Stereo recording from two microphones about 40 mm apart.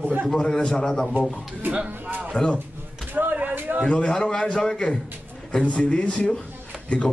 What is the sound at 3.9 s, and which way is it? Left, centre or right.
A man's voice, left.